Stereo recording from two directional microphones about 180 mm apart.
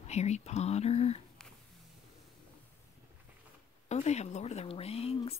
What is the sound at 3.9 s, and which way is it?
Speech, 40° left (ahead or behind).